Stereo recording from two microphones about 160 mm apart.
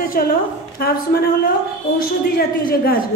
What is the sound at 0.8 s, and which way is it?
Speech, 75° left (ahead or behind).